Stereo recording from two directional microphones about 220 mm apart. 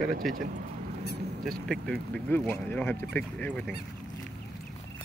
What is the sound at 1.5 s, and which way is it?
Speech, centre (ahead or behind).